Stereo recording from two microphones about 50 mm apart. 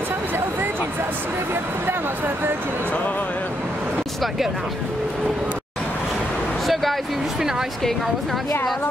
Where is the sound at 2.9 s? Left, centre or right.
Left.